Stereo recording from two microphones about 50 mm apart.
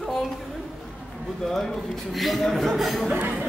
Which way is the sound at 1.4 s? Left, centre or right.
Centre.